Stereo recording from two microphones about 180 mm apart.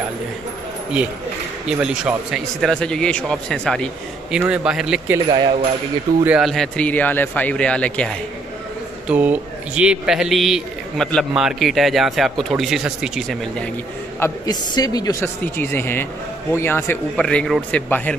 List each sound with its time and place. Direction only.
1.7 s speech: 5° right (ahead or behind)
5.3 s speech: 25° right (ahead or behind)
6.2 s speech: 5° right (ahead or behind)
9.0 s speech: 10° right (ahead or behind)
14.2 s a man's voice: 20° left (ahead or behind)
15.4 s a man's voice: 10° left (ahead or behind)